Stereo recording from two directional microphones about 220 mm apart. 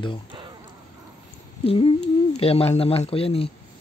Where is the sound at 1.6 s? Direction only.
25° left (ahead or behind).